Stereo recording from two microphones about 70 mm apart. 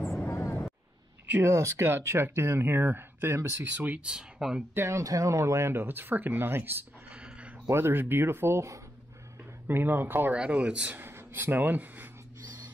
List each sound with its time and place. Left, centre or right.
0.3 s vehicle: left
1.4 s speech: right
3.7 s speech: right
4.8 s speech: right
7.1 s a sound: centre
7.6 s speech: right
9.7 s speech: right
10.3 s speech: centre
11.0 s a sound: right